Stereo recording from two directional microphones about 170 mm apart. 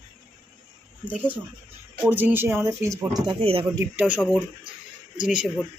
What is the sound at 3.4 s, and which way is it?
Speech, 35° right (ahead or behind).